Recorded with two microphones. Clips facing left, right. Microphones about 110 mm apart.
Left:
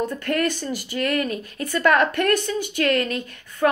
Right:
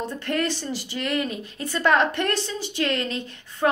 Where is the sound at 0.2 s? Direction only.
25° right (ahead or behind).